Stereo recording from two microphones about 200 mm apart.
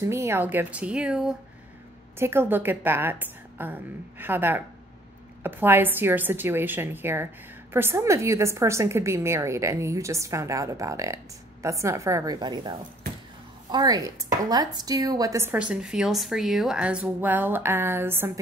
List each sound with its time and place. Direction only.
0.0 s a woman's voice: 15° right (ahead or behind)